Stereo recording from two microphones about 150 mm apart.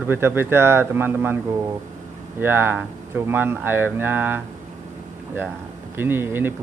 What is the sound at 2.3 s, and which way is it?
Speech, 15° right (ahead or behind).